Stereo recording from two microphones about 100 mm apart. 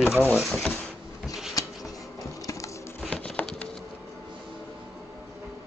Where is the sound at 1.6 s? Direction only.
35° left (ahead or behind).